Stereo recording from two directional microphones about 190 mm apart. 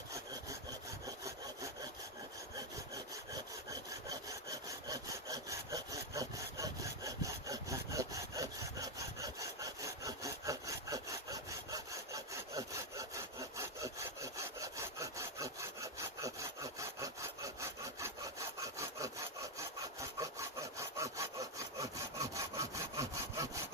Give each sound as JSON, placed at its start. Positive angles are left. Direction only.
{"t": 1.0, "sound": "sawing", "side_deg": -15}
{"t": 4.1, "sound": "sawing", "side_deg": -20}